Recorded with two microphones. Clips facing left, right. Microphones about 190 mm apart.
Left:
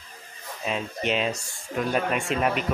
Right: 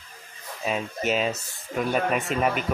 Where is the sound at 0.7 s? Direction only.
5° right (ahead or behind).